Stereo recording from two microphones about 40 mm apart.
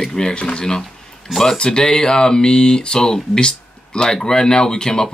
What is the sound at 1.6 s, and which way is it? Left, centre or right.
Speech, centre.